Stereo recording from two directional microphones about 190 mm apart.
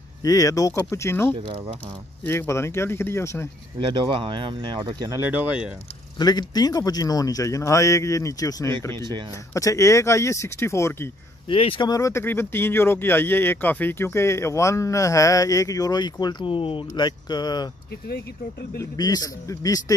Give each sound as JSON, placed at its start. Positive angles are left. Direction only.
{"t": 0.2, "sound": "speech", "side_deg": 20}
{"t": 3.8, "sound": "speech", "side_deg": -25}
{"t": 5.3, "sound": "speech", "side_deg": -5}
{"t": 6.1, "sound": "speech", "side_deg": 20}
{"t": 11.4, "sound": "speech", "side_deg": 30}
{"t": 18.8, "sound": "speech", "side_deg": 20}